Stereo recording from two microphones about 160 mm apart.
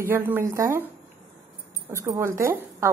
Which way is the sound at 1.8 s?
15° right (ahead or behind).